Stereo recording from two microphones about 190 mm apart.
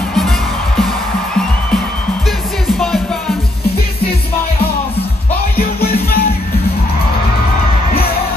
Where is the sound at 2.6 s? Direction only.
Centre (ahead or behind).